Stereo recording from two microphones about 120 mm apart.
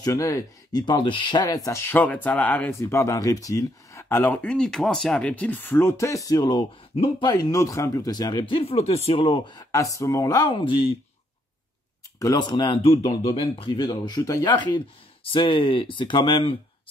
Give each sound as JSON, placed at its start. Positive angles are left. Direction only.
{"t": 0.0, "sound": "speech", "side_deg": 30}
{"t": 0.8, "sound": "speech", "side_deg": 40}
{"t": 1.9, "sound": "speech", "side_deg": 15}
{"t": 2.8, "sound": "speech", "side_deg": 25}
{"t": 10.5, "sound": "speech", "side_deg": 45}
{"t": 12.2, "sound": "speech", "side_deg": 35}